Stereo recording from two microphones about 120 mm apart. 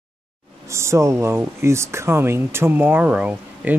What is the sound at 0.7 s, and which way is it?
Speech, 25° right (ahead or behind).